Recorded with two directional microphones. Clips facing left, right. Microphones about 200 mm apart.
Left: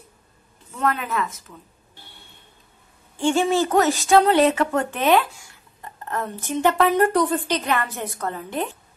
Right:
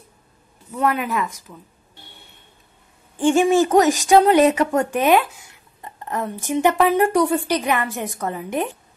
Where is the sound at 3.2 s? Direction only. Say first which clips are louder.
Right 4 dB; 15° right (ahead or behind).